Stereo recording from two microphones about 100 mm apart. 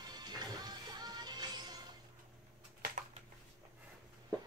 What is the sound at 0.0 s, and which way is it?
Music, 45° right (ahead or behind).